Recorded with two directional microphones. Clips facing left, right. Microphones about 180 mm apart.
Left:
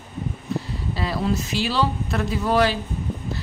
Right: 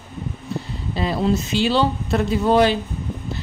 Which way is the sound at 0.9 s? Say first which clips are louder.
Right 4 dB; 20° right (ahead or behind).